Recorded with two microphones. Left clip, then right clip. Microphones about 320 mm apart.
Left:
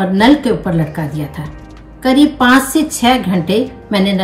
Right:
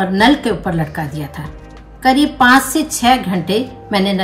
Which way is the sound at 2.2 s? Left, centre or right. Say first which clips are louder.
Left 2 dB; centre.